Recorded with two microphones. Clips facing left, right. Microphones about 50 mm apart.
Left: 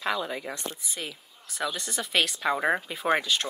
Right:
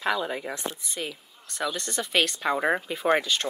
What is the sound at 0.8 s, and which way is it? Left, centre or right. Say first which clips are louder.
Speech: right 3 dB; centre.